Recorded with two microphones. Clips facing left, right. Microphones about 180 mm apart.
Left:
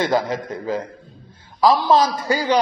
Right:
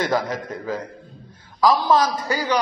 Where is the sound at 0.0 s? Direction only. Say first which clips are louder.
Left 2 dB; 25° left (ahead or behind).